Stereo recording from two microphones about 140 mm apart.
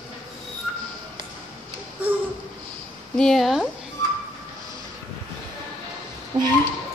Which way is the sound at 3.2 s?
Centre (ahead or behind).